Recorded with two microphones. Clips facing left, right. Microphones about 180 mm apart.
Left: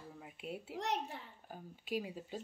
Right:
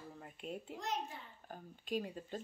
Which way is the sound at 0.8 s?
70° left (ahead or behind).